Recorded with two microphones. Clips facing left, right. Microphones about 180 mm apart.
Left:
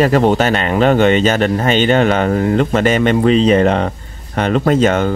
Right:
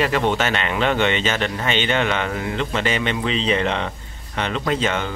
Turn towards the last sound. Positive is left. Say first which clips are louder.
# left 9 dB
turn(degrees=45)  # may be behind; listen again after turning